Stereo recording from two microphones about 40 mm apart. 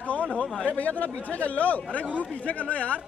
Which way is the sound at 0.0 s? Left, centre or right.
Left.